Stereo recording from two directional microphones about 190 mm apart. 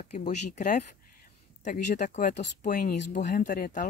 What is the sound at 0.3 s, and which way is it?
Speech, 40° left (ahead or behind).